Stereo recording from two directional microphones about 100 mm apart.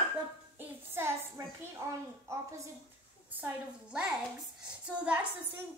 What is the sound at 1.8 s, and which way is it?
Speech, 30° right (ahead or behind).